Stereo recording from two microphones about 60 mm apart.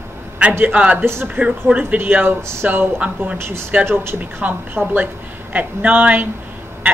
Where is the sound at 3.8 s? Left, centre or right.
Right.